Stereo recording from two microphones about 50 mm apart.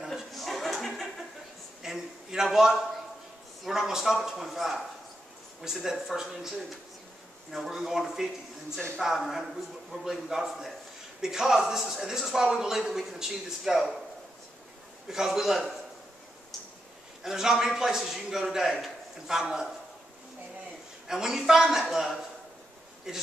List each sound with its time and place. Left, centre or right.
0.0 s chuckle: centre
1.8 s a sound: centre
3.6 s speech: centre
15.0 s speech: centre
17.2 s speech: centre
21.1 s speech: centre